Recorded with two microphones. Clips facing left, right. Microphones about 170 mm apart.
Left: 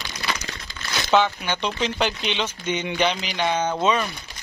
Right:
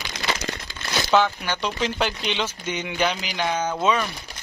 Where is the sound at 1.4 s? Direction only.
20° left (ahead or behind).